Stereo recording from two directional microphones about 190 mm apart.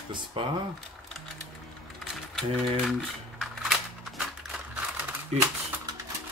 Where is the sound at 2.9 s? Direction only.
Centre (ahead or behind).